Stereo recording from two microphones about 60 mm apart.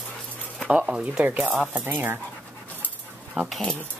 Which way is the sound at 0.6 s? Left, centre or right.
Right.